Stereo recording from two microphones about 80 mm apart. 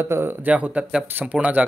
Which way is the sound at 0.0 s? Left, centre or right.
Right.